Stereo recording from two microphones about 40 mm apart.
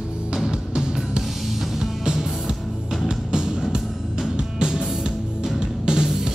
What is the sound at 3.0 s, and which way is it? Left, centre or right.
Music, centre.